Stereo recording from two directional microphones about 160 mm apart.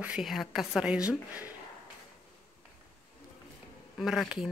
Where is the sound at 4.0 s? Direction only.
Centre (ahead or behind).